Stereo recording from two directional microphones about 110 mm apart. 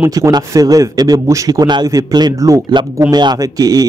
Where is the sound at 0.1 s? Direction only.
30° right (ahead or behind).